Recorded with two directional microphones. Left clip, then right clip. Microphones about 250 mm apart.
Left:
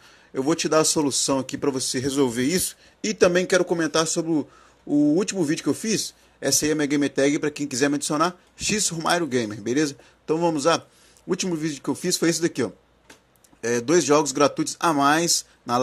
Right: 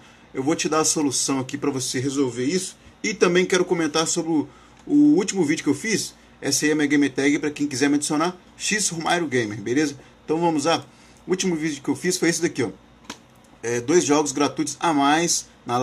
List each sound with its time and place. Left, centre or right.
0.3 s speech: left